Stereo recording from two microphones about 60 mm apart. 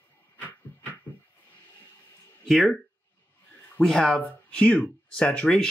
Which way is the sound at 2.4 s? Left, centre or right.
Centre.